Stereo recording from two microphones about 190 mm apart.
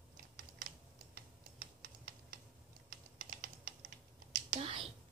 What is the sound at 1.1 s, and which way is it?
Tick, 55° right (ahead or behind).